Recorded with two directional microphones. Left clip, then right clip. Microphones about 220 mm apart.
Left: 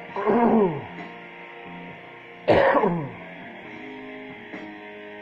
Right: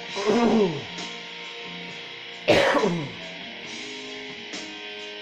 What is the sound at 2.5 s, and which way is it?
Throat clearing, 20° right (ahead or behind).